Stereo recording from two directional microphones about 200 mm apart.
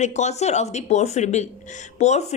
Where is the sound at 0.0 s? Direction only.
35° left (ahead or behind).